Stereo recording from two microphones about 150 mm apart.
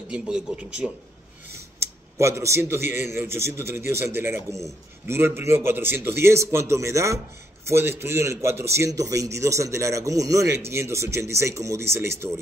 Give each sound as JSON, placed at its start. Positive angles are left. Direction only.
{"t": 0.1, "sound": "a man's voice", "side_deg": -5}
{"t": 1.5, "sound": "a man's voice", "side_deg": -20}